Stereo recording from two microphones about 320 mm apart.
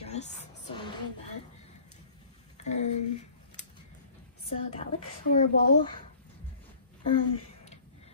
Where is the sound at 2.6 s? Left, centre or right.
Left.